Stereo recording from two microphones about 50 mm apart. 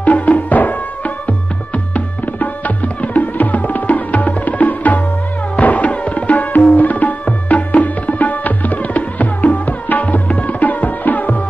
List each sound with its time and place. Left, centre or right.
0.0 s music: left
5.6 s tabla: left